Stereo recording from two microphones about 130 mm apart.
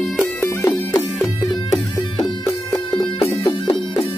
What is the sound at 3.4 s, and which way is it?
Music, 40° left (ahead or behind).